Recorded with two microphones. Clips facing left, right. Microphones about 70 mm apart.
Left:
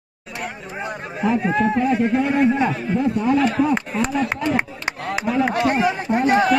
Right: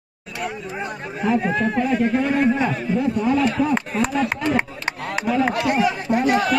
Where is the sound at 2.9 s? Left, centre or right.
Left.